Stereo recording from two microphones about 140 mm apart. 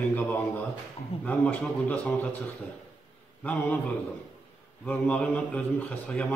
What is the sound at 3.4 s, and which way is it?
Speech, 10° left (ahead or behind).